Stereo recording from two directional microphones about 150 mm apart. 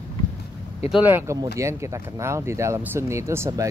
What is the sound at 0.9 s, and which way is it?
Speech, 10° right (ahead or behind).